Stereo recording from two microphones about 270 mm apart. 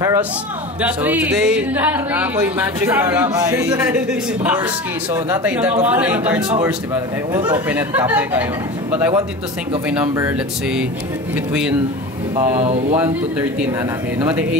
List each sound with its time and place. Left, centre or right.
0.0 s speech: centre
12.5 s speech: right
12.9 s speech: centre